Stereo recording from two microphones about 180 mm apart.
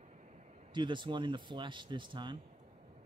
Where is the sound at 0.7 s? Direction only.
25° right (ahead or behind).